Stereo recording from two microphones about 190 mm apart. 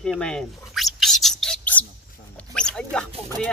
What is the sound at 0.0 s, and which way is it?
Bird, 5° left (ahead or behind).